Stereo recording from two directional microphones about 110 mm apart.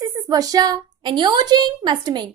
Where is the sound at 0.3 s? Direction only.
35° right (ahead or behind).